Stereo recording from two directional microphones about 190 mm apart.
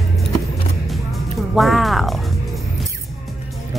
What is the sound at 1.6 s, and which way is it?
Music, centre (ahead or behind).